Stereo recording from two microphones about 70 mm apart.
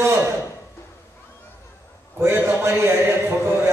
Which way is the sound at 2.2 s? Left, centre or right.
Right.